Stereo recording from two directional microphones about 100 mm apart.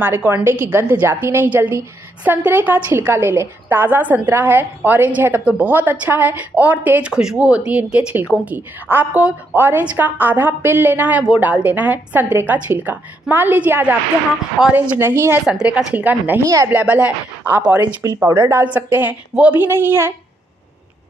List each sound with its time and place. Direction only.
0.0 s a woman's voice: 20° right (ahead or behind)
15.6 s a woman's voice: 15° right (ahead or behind)
18.0 s a woman's voice: 25° right (ahead or behind)